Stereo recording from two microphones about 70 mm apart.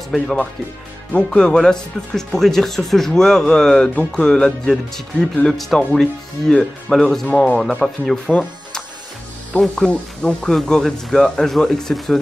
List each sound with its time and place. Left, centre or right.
1.1 s speech: centre
8.3 s music: centre
9.8 s speech: centre